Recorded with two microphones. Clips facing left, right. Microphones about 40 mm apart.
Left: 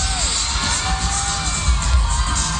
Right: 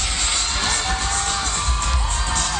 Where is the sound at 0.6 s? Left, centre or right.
Right.